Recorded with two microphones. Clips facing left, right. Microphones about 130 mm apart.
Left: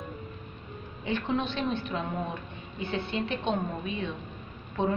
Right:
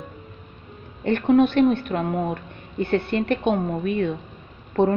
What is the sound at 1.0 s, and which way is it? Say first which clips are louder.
A woman's voice: right 12 dB; 60° right (ahead or behind).